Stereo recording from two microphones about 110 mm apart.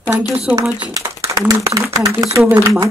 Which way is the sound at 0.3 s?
5° right (ahead or behind).